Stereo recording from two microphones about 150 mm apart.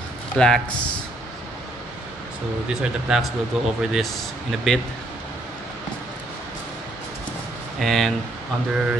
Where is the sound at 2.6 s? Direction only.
5° right (ahead or behind).